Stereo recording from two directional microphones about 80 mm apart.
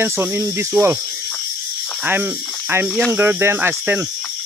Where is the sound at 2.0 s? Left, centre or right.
Right.